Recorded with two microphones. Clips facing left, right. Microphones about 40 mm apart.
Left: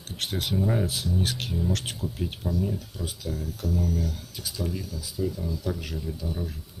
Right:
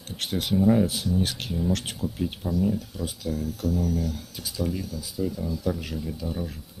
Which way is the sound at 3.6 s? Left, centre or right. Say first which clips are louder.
Right 2 dB; right.